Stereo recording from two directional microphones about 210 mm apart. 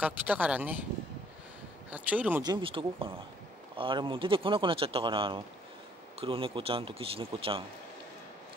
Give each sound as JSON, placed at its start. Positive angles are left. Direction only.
{"t": 0.0, "sound": "speech", "side_deg": -5}
{"t": 1.9, "sound": "speech", "side_deg": -5}
{"t": 2.4, "sound": "speech", "side_deg": -20}